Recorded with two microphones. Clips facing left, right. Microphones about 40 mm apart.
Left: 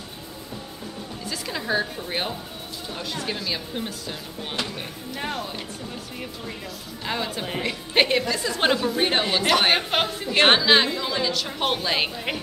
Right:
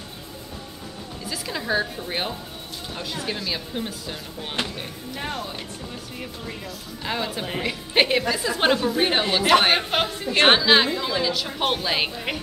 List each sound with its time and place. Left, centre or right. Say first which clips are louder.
1.3 s a woman's voice: right 1 dB; centre
4.6 s speech: right 2 dB; right
5.1 s a woman's voice: left 1 dB; centre
7.1 s a woman's voice: right 1 dB; centre